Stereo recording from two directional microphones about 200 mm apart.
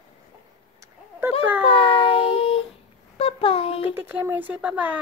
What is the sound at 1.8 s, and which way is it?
Child singing, 25° left (ahead or behind).